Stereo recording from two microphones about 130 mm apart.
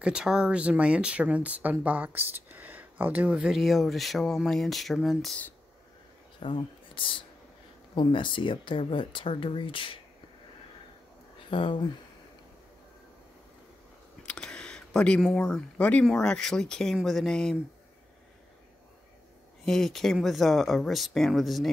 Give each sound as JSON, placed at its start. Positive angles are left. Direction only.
{"t": 0.0, "sound": "speech", "side_deg": -5}
{"t": 6.4, "sound": "speech", "side_deg": 40}
{"t": 11.5, "sound": "speech", "side_deg": 40}
{"t": 14.2, "sound": "speech", "side_deg": 5}
{"t": 19.6, "sound": "speech", "side_deg": 5}